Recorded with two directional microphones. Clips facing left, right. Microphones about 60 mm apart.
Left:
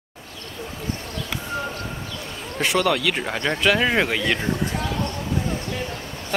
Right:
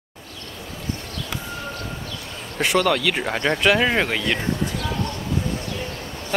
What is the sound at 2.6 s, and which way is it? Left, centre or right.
Speech, centre.